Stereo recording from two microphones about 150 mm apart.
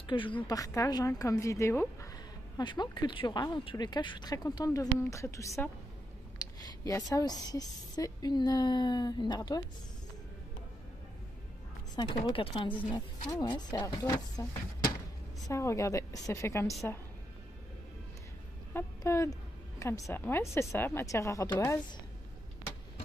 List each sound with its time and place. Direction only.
0.0 s a woman's voice: 35° left (ahead or behind)
0.5 s a woman's voice: 25° left (ahead or behind)
2.5 s a woman's voice: 30° left (ahead or behind)
11.9 s speech: 30° left (ahead or behind)
12.9 s a woman's voice: 25° left (ahead or behind)
15.4 s a woman's voice: 20° left (ahead or behind)
18.7 s a woman's voice: 15° left (ahead or behind)